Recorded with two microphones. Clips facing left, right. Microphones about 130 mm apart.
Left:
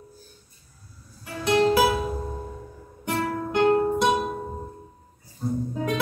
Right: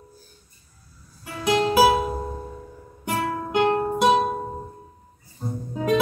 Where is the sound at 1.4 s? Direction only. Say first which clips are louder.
Right 1 dB; 15° right (ahead or behind).